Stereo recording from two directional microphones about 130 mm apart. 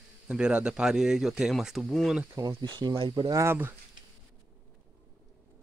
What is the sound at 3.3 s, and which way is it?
Speech, 20° right (ahead or behind).